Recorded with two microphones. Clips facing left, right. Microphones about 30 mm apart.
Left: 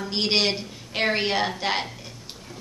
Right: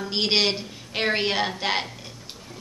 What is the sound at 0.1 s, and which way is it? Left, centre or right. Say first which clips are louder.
A woman's voice: right 1 dB; centre.